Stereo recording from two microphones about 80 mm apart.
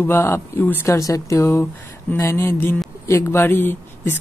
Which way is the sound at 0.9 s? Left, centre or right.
Left.